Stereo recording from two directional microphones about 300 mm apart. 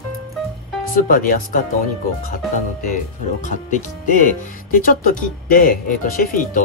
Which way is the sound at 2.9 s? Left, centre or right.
Left.